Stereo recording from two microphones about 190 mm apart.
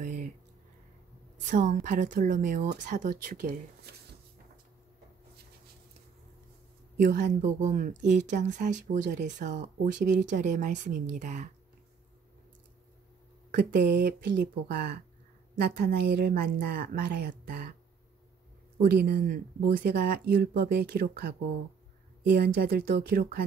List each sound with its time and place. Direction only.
0.0 s a sound: 40° right (ahead or behind)
1.4 s a woman's voice: 40° right (ahead or behind)
7.0 s a woman's voice: 45° right (ahead or behind)
13.6 s speech: 60° right (ahead or behind)
18.8 s a woman's voice: 60° right (ahead or behind)